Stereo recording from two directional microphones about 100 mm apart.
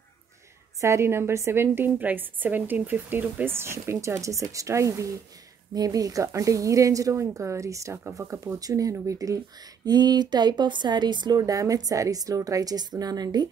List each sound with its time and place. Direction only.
0.7 s a woman's voice: 30° right (ahead or behind)